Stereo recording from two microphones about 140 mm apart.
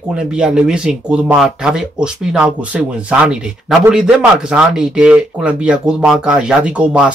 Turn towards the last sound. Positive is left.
turn(degrees=-10)  # may be behind; listen again after turning